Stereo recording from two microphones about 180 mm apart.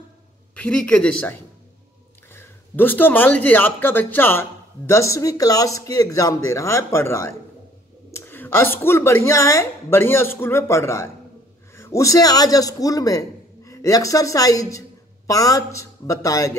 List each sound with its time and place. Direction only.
0.6 s a man's voice: 5° left (ahead or behind)